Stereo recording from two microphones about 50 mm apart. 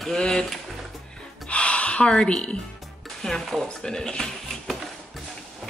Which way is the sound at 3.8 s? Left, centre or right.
Centre.